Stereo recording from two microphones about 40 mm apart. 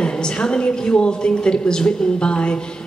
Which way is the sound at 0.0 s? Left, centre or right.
Centre.